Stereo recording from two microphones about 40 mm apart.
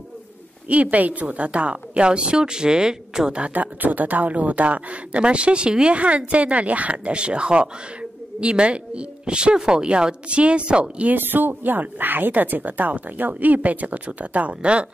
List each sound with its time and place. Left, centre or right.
0.7 s speech: right; by 3.3 s centre
3.5 s speech: right
11.1 s speech: right